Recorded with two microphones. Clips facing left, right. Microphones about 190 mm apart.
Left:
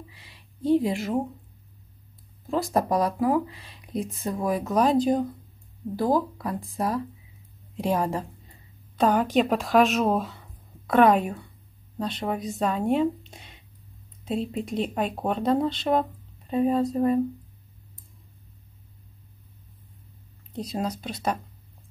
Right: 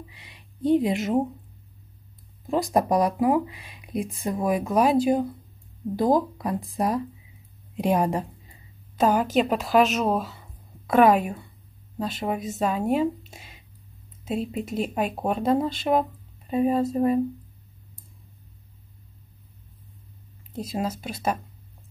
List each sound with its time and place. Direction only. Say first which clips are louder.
0.1 s speech: right 2 dB; 20° right (ahead or behind)
2.4 s speech: right 2 dB; 15° right (ahead or behind)
8.5 s a woman's voice: right 1 dB; 5° right (ahead or behind)
20.5 s speech: right 1 dB; 5° right (ahead or behind)